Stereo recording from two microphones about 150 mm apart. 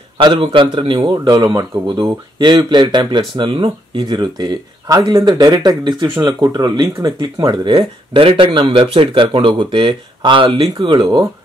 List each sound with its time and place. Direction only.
0.2 s speech: 30° right (ahead or behind)